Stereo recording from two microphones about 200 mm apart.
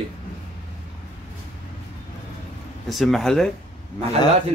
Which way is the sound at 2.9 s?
Centre (ahead or behind).